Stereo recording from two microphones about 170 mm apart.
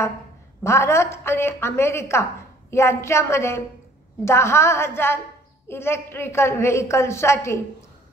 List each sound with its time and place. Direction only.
0.7 s a woman's voice: 15° left (ahead or behind)